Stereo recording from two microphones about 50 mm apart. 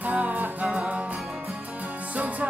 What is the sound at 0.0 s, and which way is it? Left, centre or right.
Music, right.